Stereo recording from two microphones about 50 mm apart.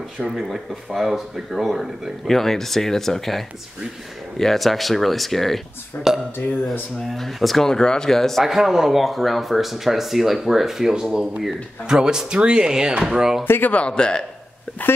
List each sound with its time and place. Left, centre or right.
0.2 s speech: centre
2.2 s speech: centre
6.1 s speech: centre
8.5 s speech: centre
13.7 s speech: left
14.8 s speech: left